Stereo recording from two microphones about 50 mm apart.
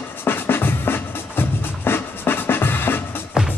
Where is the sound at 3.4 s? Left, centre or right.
Centre.